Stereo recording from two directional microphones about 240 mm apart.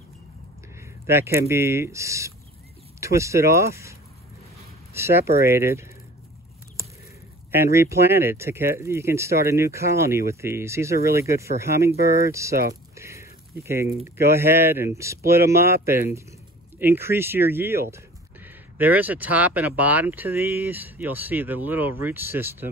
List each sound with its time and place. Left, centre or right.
0.7 s speech: centre
4.9 s speech: centre
7.5 s speech: centre
12.0 s speech: left
12.3 s speech: centre
12.9 s a sound: centre
14.0 s speech: centre